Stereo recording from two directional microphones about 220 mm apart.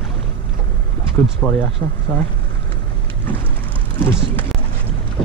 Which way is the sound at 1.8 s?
20° left (ahead or behind).